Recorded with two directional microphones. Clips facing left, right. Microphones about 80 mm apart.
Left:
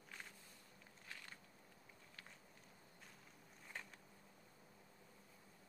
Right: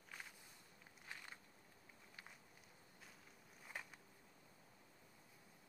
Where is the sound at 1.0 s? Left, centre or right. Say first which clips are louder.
Right 1 dB; centre.